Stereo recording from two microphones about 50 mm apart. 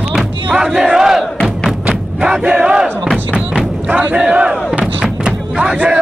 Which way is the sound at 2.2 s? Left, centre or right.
Centre.